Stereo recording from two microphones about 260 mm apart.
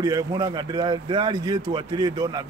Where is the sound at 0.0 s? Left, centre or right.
Centre.